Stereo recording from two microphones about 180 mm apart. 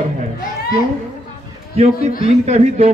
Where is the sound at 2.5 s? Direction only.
35° right (ahead or behind).